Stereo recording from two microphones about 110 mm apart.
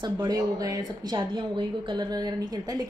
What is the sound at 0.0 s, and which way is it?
A woman's voice, 35° right (ahead or behind).